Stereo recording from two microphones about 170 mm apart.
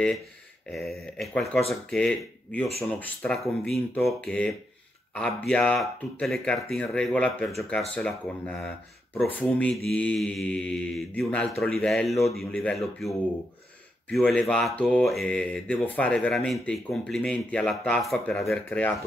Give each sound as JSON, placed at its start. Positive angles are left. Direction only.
{"t": 0.7, "sound": "speech", "side_deg": 0}
{"t": 3.2, "sound": "speech", "side_deg": 15}
{"t": 3.6, "sound": "speech", "side_deg": 0}
{"t": 14.1, "sound": "speech", "side_deg": 5}